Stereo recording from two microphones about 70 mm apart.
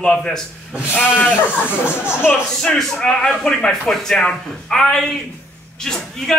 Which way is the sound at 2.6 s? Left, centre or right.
Centre.